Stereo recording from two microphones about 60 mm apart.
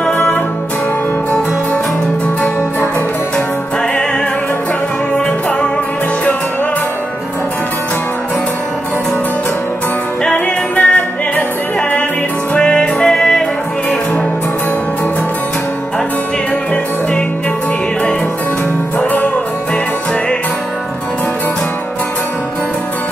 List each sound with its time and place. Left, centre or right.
0.0 s music: centre
10.2 s music: centre
12.5 s music: centre